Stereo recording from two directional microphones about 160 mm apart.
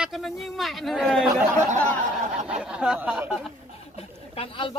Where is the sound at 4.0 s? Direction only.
35° left (ahead or behind).